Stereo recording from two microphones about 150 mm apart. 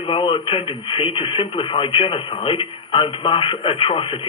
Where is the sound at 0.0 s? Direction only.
35° left (ahead or behind).